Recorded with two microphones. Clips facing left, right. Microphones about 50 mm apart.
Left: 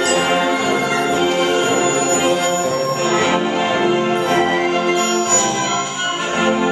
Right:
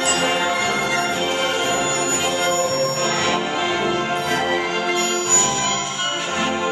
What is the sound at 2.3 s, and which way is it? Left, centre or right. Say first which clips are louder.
Music: left 3 dB; centre.